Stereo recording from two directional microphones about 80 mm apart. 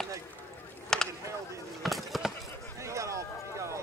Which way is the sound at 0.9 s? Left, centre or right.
Centre.